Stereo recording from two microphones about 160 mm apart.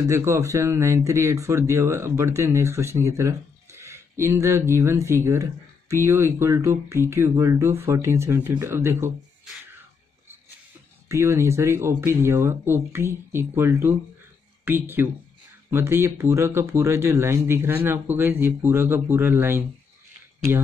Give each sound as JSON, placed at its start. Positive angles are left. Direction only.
{"t": 0.1, "sound": "speech", "side_deg": -15}
{"t": 11.1, "sound": "speech", "side_deg": -20}